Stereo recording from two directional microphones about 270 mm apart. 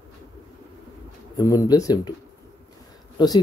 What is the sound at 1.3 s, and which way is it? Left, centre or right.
Speech, centre.